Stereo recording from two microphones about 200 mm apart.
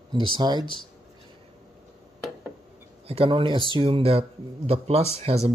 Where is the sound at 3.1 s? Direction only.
25° right (ahead or behind).